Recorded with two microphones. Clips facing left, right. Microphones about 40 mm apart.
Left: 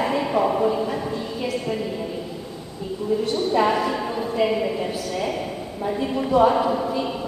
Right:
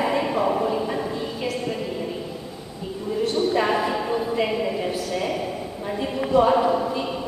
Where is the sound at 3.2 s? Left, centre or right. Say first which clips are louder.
Even; centre.